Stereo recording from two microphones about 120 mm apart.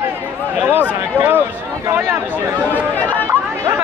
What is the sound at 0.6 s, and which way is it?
Speech, 15° right (ahead or behind).